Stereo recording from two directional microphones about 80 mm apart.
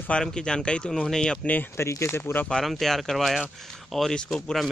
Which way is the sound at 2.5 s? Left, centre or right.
Centre.